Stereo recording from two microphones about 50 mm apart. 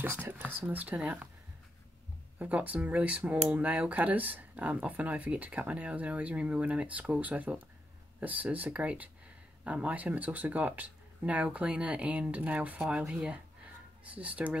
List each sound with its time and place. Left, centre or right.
0.0 s speech: right
0.6 s speech: right
2.3 s speech: right
13.0 s speech: centre
14.1 s speech: right